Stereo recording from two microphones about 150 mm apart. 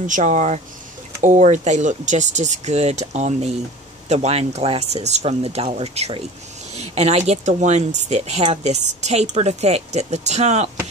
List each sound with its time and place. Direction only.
0.0 s speech: 55° right (ahead or behind)